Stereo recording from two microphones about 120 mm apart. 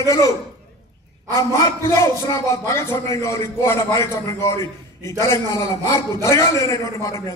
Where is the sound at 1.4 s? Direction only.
25° left (ahead or behind).